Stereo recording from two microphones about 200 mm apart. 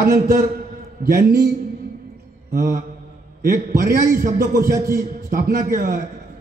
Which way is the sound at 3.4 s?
45° right (ahead or behind).